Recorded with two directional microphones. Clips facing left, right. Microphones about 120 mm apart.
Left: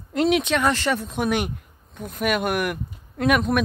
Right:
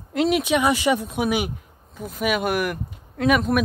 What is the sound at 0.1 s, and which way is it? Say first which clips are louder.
Speech: even; 5° right (ahead or behind).